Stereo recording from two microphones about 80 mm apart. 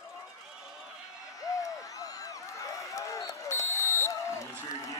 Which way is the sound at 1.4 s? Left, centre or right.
Left.